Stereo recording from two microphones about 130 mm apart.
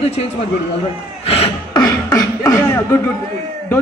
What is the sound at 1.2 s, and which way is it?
Cough, 50° left (ahead or behind).